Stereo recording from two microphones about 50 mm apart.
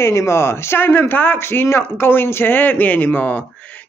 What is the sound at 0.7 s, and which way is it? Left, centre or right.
Speech, left.